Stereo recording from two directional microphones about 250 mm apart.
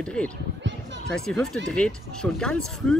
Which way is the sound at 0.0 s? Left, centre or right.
Centre.